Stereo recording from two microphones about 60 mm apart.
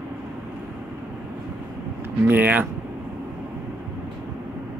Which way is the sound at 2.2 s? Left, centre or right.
Right.